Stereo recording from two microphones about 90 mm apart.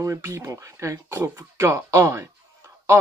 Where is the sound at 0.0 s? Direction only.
30° right (ahead or behind).